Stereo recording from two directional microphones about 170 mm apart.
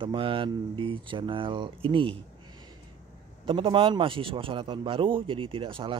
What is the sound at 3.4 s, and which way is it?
A man's voice, 30° right (ahead or behind).